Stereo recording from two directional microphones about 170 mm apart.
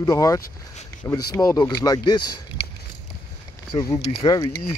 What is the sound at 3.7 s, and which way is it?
Speech, 25° left (ahead or behind).